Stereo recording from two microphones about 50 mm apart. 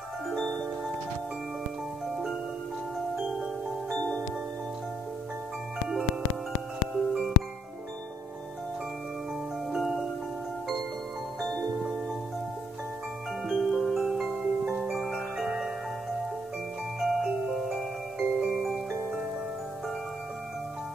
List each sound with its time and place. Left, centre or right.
0.3 s marimba: centre
2.0 s glockenspiel: centre
3.2 s marimba: centre
3.9 s marimba: left
6.9 s music: centre
9.7 s music: centre
13.5 s music: centre
15.0 s music: centre
17.0 s music: centre
18.6 s music: centre